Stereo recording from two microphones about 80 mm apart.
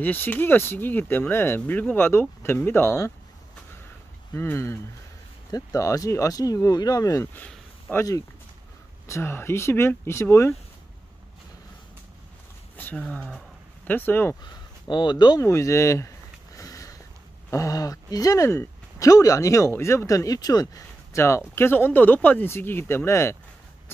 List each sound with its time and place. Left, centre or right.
0.0 s speech: left
4.3 s speech: left
5.5 s speech: left
12.7 s speech: centre
14.4 s speech: left
15.4 s speech: left
16.5 s sniff: left
17.5 s speech: left
20.6 s speech: left